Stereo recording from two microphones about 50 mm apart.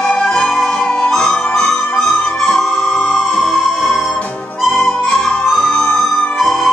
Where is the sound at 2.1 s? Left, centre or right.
Left.